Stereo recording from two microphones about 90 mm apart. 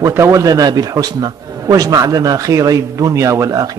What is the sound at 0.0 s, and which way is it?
A man's voice, 35° right (ahead or behind).